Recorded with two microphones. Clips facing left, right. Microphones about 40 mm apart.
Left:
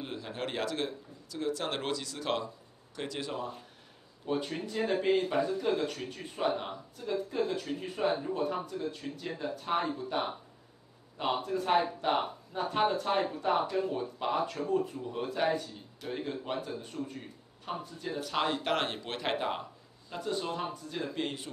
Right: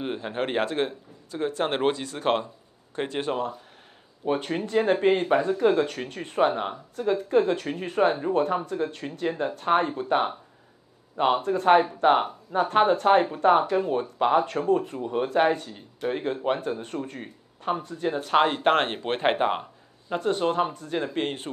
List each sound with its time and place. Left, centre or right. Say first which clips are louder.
0.0 s a man's voice: right 8 dB; right
20.1 s speech: right 10 dB; right